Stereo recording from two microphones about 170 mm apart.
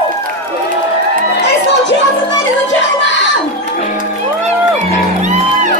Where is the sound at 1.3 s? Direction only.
90° left.